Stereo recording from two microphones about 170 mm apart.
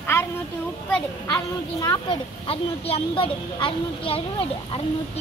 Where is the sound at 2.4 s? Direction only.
35° left (ahead or behind).